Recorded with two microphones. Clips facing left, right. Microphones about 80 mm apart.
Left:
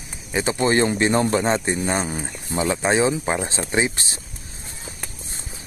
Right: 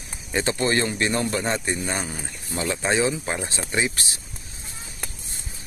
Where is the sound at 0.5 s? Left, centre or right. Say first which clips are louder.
Left 8 dB; left.